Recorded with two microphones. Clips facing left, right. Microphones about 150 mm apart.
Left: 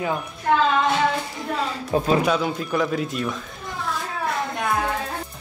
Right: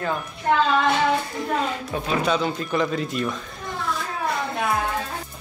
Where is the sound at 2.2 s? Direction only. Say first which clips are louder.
Left 1 dB; 5° left (ahead or behind).